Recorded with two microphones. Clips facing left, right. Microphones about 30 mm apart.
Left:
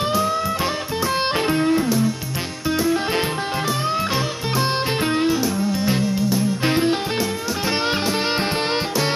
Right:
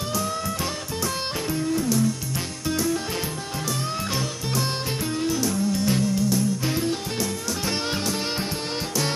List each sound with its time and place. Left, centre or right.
1.5 s music: left
4.6 s music: left
5.4 s music: left
6.6 s music: left